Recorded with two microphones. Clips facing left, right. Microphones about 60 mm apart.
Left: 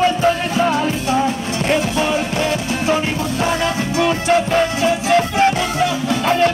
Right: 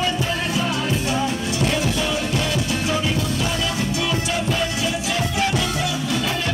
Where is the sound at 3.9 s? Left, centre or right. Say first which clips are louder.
Left 8 dB; left.